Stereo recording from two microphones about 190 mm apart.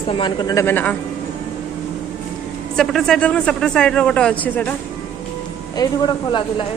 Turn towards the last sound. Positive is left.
turn(degrees=20)  # may be behind; listen again after turning